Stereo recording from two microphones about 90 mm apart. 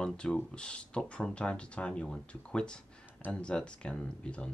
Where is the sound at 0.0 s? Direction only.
10° left (ahead or behind).